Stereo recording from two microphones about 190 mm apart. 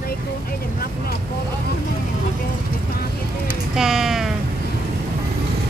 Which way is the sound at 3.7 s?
Centre (ahead or behind).